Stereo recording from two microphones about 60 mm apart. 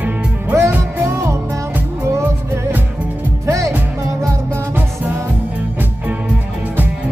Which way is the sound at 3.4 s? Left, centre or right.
Right.